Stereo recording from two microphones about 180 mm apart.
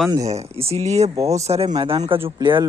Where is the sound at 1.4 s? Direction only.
30° right (ahead or behind).